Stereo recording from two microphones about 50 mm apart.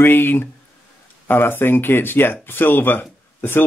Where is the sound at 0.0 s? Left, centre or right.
Left.